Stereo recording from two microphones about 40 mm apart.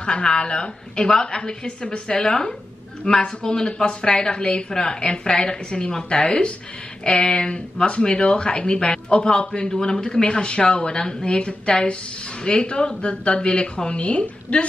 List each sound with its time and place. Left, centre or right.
0.0 s speech: left